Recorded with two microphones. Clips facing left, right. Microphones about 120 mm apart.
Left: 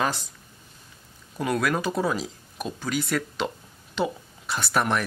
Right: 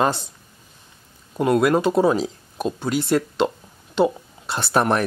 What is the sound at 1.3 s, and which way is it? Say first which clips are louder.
Speech: right 8 dB; 25° right (ahead or behind).